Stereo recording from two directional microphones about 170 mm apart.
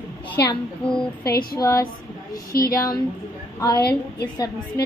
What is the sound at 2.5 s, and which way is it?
Speech, 60° left (ahead or behind).